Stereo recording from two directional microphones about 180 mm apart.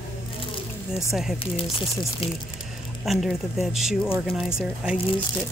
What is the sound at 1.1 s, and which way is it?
Speech, centre (ahead or behind).